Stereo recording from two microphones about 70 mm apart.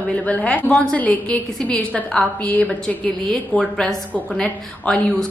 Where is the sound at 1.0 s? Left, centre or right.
Left.